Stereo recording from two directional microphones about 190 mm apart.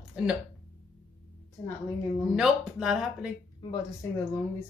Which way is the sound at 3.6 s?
20° left (ahead or behind).